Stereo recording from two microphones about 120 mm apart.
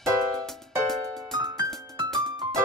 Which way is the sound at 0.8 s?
5° left (ahead or behind).